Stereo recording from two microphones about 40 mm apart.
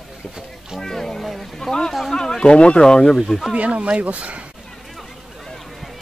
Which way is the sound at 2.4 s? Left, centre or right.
Left.